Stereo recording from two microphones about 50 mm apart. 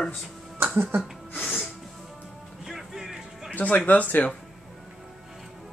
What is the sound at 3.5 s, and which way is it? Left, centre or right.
Speech, left.